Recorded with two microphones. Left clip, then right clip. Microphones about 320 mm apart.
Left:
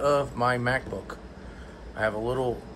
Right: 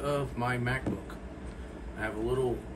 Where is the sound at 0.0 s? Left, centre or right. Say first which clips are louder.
Left 8 dB; left.